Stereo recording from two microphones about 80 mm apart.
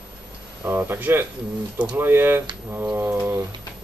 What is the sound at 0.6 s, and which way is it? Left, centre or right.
Speech, right.